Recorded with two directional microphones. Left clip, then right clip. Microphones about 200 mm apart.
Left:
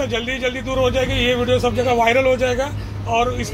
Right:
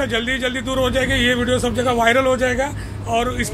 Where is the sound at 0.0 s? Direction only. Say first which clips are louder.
Right 1 dB; 20° right (ahead or behind).